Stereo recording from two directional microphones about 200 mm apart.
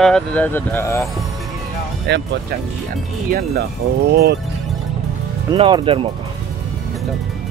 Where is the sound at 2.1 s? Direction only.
55° right (ahead or behind).